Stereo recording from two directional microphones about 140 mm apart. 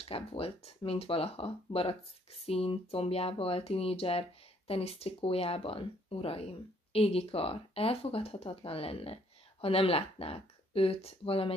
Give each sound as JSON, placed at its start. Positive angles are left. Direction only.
{"t": 0.0, "sound": "speech", "side_deg": 40}